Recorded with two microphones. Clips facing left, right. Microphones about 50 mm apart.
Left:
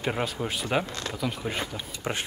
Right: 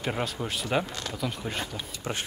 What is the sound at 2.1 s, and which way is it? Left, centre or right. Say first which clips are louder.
Speech: left 2 dB; left.